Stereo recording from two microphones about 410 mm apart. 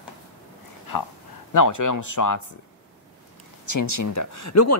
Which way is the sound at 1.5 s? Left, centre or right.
Left.